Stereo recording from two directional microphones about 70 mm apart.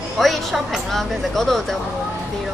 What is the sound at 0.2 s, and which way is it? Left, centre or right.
Speech, centre.